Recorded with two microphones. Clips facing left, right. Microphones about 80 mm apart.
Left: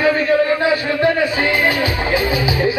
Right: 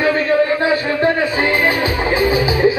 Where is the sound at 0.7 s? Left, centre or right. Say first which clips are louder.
Even; right.